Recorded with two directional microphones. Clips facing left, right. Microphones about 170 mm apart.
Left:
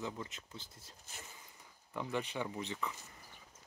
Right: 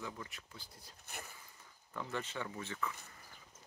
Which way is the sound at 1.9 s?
15° left (ahead or behind).